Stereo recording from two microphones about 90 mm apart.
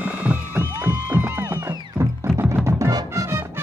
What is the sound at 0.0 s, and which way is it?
Music, 15° right (ahead or behind).